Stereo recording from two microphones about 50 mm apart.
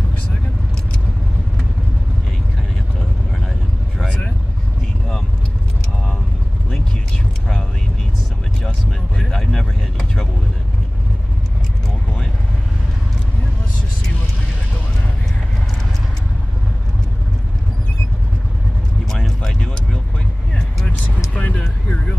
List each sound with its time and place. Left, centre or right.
9.2 s vehicle: centre
19.0 s a sound: centre
21.3 s vehicle: left